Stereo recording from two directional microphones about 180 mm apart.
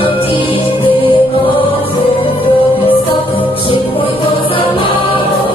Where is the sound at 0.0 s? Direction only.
30° left (ahead or behind).